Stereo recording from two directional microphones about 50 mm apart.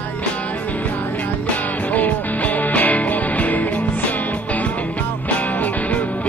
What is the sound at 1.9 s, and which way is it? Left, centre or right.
Music, left.